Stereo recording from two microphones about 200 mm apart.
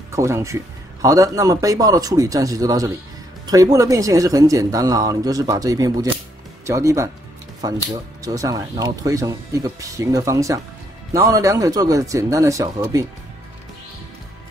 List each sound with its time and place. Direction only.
0.1 s speech: 15° right (ahead or behind)